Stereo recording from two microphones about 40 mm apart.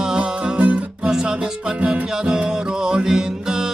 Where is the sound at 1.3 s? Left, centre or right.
Right.